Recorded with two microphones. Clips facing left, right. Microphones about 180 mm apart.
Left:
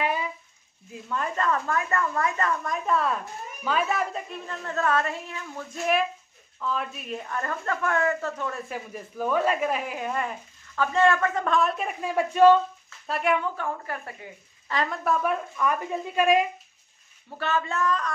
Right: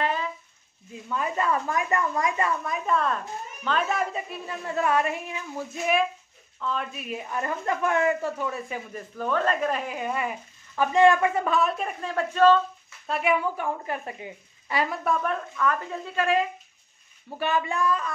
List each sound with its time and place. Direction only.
0.0 s a sound: 10° left (ahead or behind)
0.9 s a woman's voice: 5° right (ahead or behind)
5.8 s a woman's voice: centre (ahead or behind)
10.8 s a woman's voice: 15° right (ahead or behind); by 12.6 s 15° left (ahead or behind)
13.0 s speech: centre (ahead or behind)
13.6 s a woman's voice: 20° right (ahead or behind)
15.0 s speech: 5° left (ahead or behind)
17.4 s a woman's voice: 15° right (ahead or behind)